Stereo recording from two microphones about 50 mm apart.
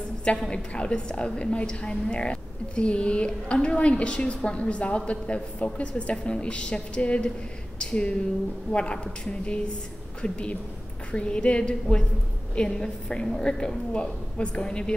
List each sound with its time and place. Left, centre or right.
0.5 s a woman's voice: left